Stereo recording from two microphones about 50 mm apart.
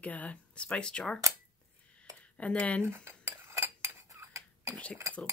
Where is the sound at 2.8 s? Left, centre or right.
Right.